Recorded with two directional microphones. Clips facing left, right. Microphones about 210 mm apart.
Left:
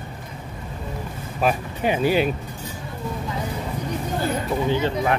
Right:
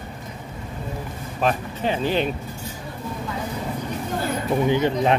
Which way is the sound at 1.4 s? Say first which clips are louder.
Left 1 dB; 10° left (ahead or behind).